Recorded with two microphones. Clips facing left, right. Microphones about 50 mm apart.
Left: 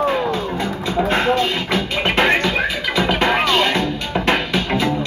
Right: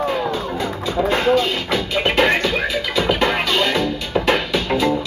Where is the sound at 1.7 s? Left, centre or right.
Centre.